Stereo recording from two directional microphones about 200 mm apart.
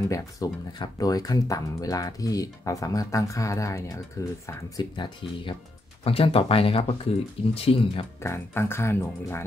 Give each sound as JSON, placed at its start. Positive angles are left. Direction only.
{"t": 0.1, "sound": "speech", "side_deg": 15}
{"t": 8.2, "sound": "speech", "side_deg": 10}